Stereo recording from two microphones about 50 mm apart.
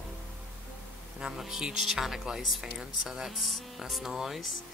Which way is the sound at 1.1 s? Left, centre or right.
Centre.